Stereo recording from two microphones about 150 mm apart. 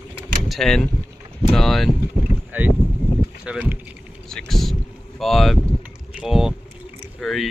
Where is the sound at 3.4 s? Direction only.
10° right (ahead or behind).